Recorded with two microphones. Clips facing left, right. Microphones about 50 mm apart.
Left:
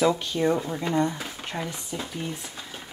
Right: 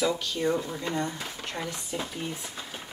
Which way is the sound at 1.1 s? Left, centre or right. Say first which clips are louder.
Left 2 dB; centre.